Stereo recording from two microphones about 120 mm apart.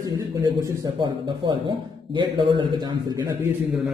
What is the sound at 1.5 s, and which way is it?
A man's voice, 45° right (ahead or behind).